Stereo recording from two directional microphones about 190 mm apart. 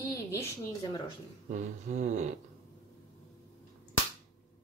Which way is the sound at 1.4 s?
40° right (ahead or behind).